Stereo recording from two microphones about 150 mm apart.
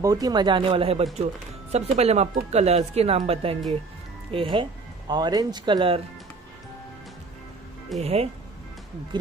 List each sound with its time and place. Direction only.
0.0 s speech: 25° right (ahead or behind)
8.0 s speech: 45° right (ahead or behind)
9.1 s speech: 30° right (ahead or behind)